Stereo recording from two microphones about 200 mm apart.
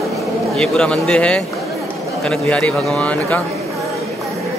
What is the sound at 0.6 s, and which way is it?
A man's voice, 5° left (ahead or behind).